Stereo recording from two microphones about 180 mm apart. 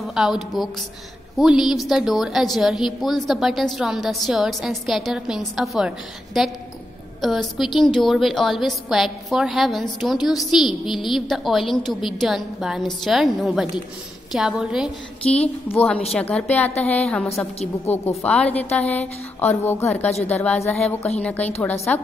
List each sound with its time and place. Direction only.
0.0 s a woman's voice: centre (ahead or behind)
15.7 s a woman's voice: 10° left (ahead or behind)